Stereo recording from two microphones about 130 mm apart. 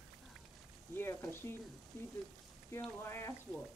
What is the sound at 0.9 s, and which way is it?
Frying, 20° left (ahead or behind).